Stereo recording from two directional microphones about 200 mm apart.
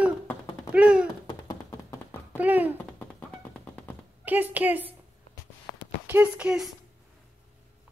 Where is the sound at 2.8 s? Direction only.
5° left (ahead or behind).